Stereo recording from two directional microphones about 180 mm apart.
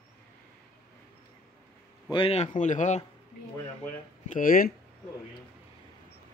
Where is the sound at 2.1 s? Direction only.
30° left (ahead or behind).